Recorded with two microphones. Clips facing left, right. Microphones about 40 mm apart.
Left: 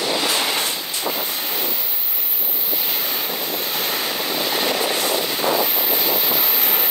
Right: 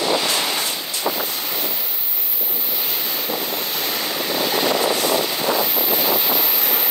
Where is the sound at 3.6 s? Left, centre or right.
Centre.